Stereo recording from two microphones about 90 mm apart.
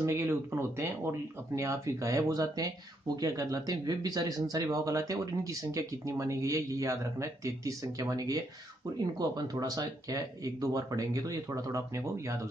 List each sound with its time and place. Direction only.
0.0 s speech: 30° right (ahead or behind)
9.5 s speech: 45° right (ahead or behind)